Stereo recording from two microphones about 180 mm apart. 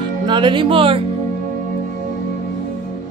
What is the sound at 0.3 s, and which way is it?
Speech, 25° right (ahead or behind).